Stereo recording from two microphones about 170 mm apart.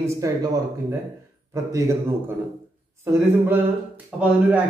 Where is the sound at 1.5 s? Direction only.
20° right (ahead or behind).